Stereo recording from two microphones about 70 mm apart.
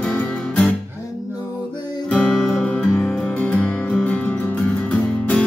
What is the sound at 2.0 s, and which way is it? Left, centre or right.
Music, centre.